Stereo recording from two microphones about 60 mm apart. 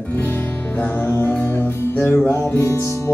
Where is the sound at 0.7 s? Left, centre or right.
Left.